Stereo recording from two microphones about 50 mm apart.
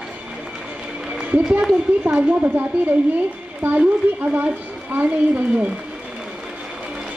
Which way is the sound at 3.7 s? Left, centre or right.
Right.